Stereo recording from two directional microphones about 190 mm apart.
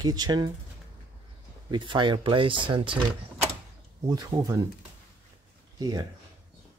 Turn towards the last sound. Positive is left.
turn(degrees=-20)  # may be behind; listen again after turning